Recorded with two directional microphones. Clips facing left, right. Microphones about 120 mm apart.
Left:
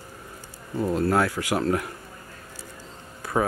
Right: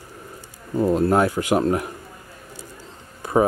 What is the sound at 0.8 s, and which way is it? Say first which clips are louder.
Speech: right 5 dB; 20° right (ahead or behind).